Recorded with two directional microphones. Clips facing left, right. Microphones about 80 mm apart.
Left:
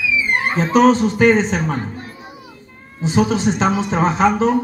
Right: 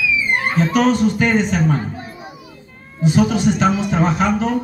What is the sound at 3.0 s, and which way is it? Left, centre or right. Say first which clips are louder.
Speech: right 1 dB; left.